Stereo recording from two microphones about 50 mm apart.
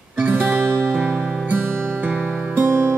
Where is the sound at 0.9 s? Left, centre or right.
Right.